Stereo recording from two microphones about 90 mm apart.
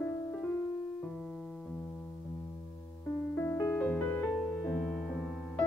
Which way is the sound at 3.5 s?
30° left (ahead or behind).